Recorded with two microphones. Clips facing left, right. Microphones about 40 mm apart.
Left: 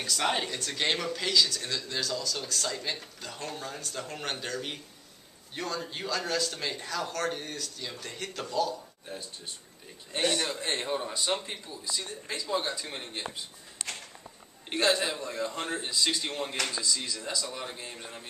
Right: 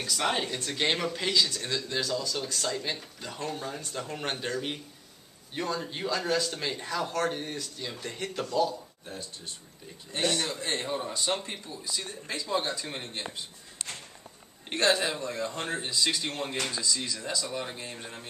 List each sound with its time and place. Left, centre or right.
0.0 s speech: centre
0.7 s speech: centre
2.5 s speech: centre
7.8 s speech: centre
9.0 s a man's voice: centre
14.7 s speech: centre